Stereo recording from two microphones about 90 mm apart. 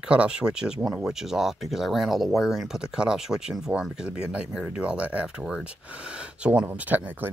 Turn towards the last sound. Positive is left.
turn(degrees=-20)  # may be behind; listen again after turning